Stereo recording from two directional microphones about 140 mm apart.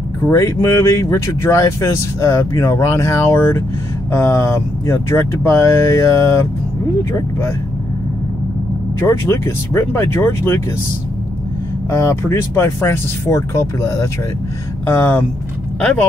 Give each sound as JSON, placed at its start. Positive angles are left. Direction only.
{"t": 0.2, "sound": "speech", "side_deg": 20}
{"t": 9.0, "sound": "speech", "side_deg": 20}
{"t": 11.9, "sound": "speech", "side_deg": 20}